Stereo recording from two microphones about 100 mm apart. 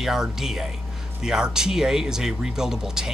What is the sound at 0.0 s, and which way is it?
Speech, 5° right (ahead or behind).